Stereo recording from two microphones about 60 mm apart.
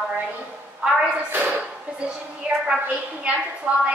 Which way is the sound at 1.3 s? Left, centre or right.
Right.